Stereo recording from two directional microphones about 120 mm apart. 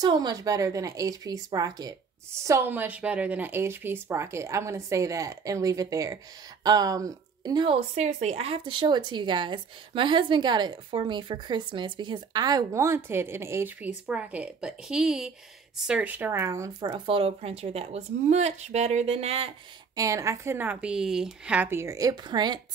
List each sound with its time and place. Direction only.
0.0 s a woman's voice: 35° right (ahead or behind)
7.9 s a woman's voice: 65° right (ahead or behind); by 16.7 s 25° right (ahead or behind)
16.8 s a woman's voice: 40° right (ahead or behind)
20.0 s a woman's voice: 25° right (ahead or behind)